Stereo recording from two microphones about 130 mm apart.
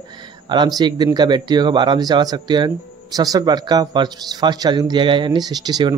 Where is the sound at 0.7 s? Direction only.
35° right (ahead or behind).